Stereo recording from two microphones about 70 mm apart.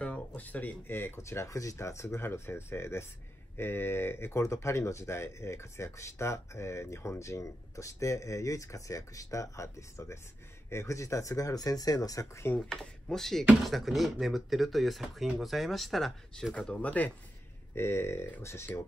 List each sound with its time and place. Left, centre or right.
0.0 s speech: centre; by 12.3 s left
12.5 s speech: centre
16.5 s speech: centre
17.7 s speech: left